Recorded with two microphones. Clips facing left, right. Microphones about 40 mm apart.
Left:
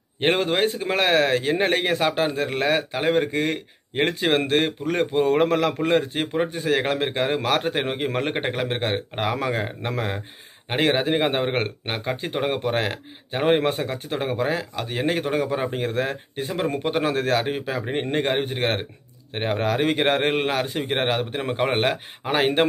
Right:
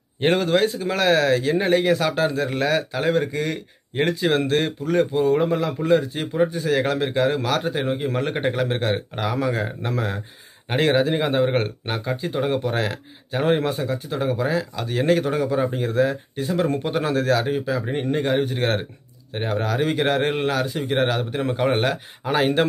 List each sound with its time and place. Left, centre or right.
0.2 s a man's voice: left
6.3 s a man's voice: left
16.5 s a man's voice: left